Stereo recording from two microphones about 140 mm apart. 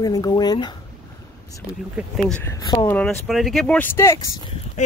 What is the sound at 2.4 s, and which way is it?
Speech, 25° left (ahead or behind).